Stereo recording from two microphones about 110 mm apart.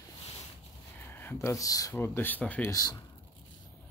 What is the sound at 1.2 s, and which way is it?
Speech, 20° left (ahead or behind).